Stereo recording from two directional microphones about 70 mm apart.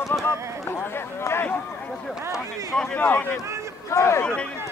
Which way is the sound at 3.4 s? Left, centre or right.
Right.